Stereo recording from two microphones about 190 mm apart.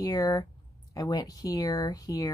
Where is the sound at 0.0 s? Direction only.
20° left (ahead or behind).